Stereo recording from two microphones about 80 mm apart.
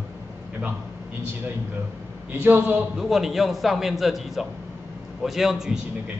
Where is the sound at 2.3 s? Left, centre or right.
Right.